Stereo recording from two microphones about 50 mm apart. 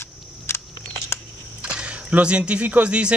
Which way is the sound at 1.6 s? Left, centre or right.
Right.